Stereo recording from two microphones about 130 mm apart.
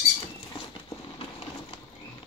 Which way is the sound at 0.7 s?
45° left (ahead or behind).